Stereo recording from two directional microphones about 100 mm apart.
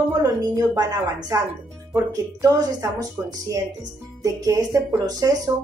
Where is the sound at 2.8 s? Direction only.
35° right (ahead or behind).